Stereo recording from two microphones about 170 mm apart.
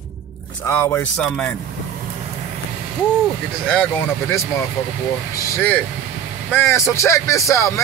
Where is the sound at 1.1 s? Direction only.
5° left (ahead or behind).